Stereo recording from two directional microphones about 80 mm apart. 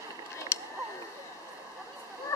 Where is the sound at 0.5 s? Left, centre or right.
Left.